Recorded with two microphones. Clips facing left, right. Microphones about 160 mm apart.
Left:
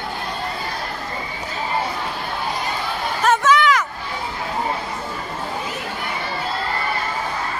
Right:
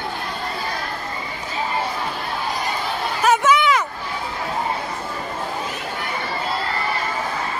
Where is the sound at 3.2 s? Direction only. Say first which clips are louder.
Right 1 dB; 5° right (ahead or behind).